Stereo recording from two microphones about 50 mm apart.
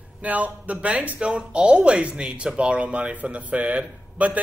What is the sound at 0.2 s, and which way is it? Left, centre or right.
Speech, right.